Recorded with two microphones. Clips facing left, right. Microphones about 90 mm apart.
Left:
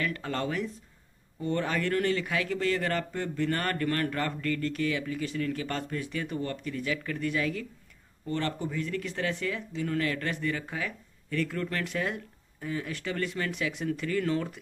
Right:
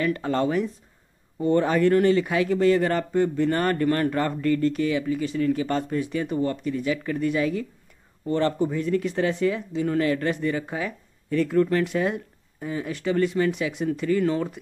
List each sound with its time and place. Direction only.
0.0 s speech: 20° right (ahead or behind)